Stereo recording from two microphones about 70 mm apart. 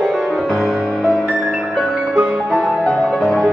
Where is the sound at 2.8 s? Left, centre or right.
Centre.